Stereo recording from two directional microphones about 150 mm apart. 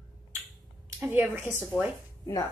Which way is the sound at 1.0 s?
15° right (ahead or behind).